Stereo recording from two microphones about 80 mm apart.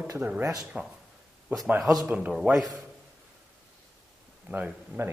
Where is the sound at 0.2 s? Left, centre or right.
Right.